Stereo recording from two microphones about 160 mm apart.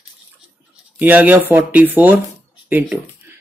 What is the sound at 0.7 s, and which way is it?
Speech, 10° right (ahead or behind).